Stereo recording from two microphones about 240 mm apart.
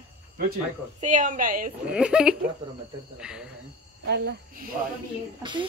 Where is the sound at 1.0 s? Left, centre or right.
Right.